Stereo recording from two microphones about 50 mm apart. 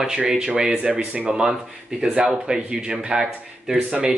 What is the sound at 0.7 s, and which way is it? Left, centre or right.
Speech, right.